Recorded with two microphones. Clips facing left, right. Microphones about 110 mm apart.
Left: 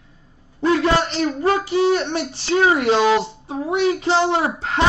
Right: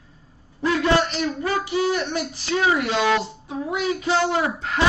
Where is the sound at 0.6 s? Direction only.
30° left (ahead or behind).